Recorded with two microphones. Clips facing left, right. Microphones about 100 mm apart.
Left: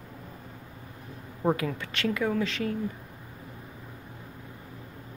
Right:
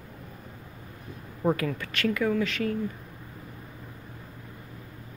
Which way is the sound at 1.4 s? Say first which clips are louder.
Right 1 dB; 20° left (ahead or behind).